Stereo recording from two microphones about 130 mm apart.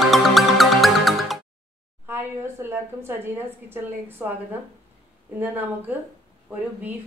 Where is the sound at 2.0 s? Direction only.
15° right (ahead or behind).